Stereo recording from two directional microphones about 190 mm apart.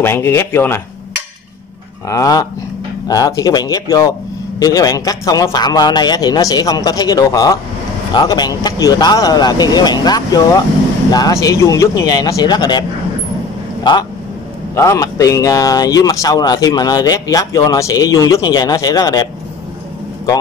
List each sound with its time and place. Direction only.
0.0 s speech: 10° left (ahead or behind)
2.0 s speech: 20° left (ahead or behind)
14.8 s speech: 15° left (ahead or behind)